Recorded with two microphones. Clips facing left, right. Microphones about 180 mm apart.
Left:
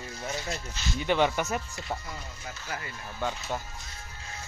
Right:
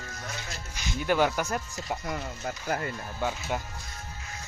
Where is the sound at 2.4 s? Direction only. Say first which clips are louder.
Right 7 dB; 50° right (ahead or behind).